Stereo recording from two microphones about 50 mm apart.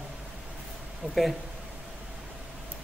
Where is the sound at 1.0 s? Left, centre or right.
Right.